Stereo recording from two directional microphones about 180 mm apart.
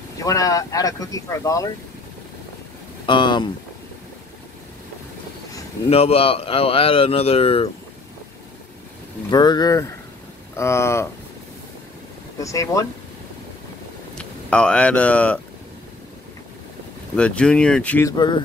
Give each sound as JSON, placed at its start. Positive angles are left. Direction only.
{"t": 0.2, "sound": "speech", "side_deg": 20}
{"t": 3.1, "sound": "speech", "side_deg": 25}
{"t": 5.9, "sound": "a man's voice", "side_deg": 35}
{"t": 9.3, "sound": "speech", "side_deg": 20}
{"t": 12.4, "sound": "speech", "side_deg": 15}
{"t": 14.1, "sound": "speech", "side_deg": 5}
{"t": 17.1, "sound": "speech", "side_deg": 5}
{"t": 18.1, "sound": "speech", "side_deg": 25}